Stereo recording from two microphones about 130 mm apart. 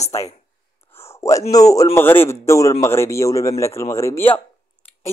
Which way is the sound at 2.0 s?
15° left (ahead or behind).